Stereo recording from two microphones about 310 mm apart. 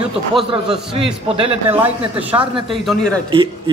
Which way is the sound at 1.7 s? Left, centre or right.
Centre.